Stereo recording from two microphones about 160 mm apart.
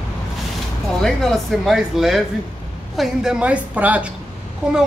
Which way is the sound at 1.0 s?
Centre (ahead or behind).